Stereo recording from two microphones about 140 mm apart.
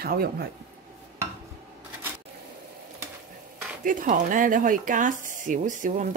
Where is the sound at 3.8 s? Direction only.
70° right (ahead or behind).